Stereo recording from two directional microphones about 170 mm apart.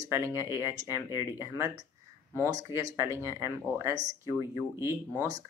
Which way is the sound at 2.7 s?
15° right (ahead or behind).